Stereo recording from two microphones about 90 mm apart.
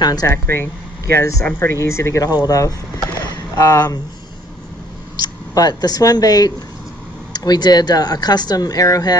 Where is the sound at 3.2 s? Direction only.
35° left (ahead or behind).